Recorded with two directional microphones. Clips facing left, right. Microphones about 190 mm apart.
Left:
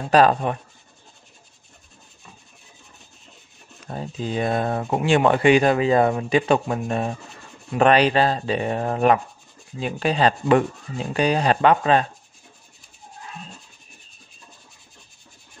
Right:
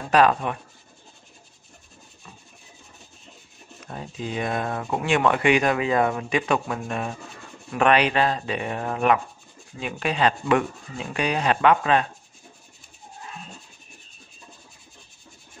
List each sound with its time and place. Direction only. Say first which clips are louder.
0.1 s speech: left 2 dB; 35° left (ahead or behind)
3.8 s speech: left 4 dB; 35° left (ahead or behind)